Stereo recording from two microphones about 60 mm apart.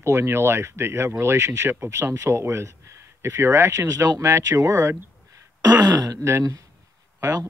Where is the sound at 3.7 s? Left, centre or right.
Right.